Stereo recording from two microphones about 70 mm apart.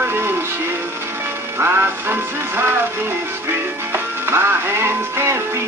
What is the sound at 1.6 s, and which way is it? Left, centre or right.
Music, right.